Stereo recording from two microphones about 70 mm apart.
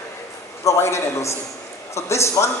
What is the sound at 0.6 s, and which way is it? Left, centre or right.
A man's voice, left.